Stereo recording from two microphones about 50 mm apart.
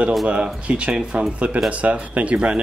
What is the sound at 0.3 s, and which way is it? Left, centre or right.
Speech, right.